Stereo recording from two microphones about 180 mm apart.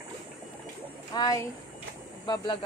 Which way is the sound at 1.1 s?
20° left (ahead or behind).